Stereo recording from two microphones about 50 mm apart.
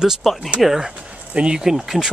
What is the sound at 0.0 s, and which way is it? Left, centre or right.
Speech, centre.